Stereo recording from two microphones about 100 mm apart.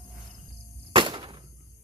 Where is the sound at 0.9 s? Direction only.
60° right (ahead or behind).